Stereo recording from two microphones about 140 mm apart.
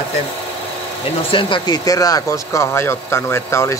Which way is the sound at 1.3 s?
35° left (ahead or behind).